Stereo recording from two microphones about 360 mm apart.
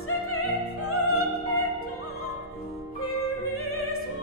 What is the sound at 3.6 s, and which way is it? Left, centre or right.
Music, left.